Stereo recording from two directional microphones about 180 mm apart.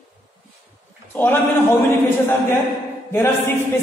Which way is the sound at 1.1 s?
10° left (ahead or behind).